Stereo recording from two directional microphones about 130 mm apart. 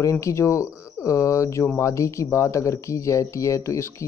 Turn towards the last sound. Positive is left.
turn(degrees=20)  # may be behind; listen again after turning